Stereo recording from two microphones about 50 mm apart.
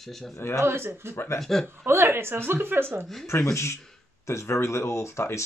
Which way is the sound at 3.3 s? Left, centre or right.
Left.